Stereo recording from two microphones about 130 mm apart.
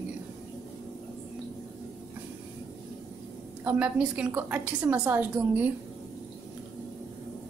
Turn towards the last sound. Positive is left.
turn(degrees=-15)  # may be behind; listen again after turning